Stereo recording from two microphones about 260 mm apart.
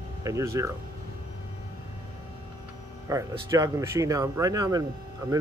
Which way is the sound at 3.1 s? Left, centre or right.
Centre.